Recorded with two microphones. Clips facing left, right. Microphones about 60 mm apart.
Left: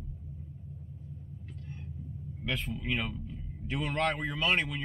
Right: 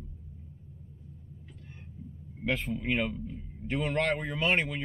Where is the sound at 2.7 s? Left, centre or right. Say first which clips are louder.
Right 4 dB; right.